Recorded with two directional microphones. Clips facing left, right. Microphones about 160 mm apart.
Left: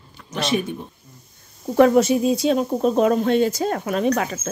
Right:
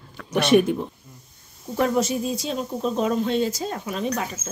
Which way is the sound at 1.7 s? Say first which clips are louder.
Left 7 dB; 70° left (ahead or behind).